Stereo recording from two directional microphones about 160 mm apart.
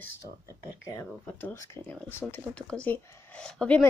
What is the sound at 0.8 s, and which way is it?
Speech, 20° left (ahead or behind).